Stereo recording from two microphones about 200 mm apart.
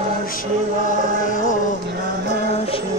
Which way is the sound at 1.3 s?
40° left (ahead or behind).